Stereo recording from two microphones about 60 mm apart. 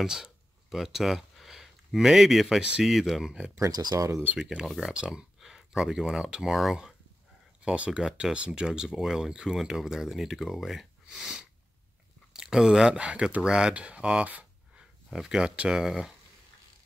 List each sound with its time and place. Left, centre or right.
0.0 s speech: centre
3.5 s speech: right
4.4 s speech: centre
7.6 s speech: centre
15.0 s speech: centre